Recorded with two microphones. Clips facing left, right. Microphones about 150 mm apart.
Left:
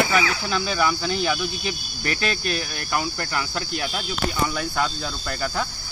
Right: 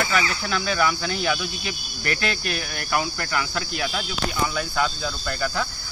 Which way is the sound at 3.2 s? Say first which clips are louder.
Right 1 dB; 30° left (ahead or behind).